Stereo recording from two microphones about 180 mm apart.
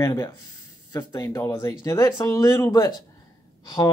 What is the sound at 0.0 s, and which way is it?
Speech, 15° left (ahead or behind).